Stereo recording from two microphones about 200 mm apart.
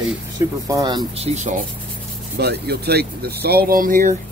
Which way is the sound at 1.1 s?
35° right (ahead or behind).